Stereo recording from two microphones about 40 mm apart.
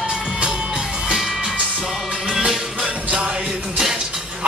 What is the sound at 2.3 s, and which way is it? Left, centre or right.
Music, right.